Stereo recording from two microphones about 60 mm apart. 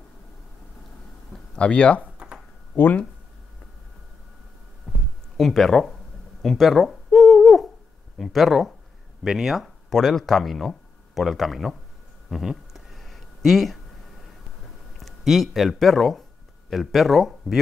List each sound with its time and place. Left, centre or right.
1.5 s speech: centre
2.7 s speech: left
4.9 s a sound: centre
5.4 s speech: centre
6.4 s owl: centre
8.2 s speech: centre
9.2 s speech: centre
12.3 s a sound: centre
15.0 s speech: centre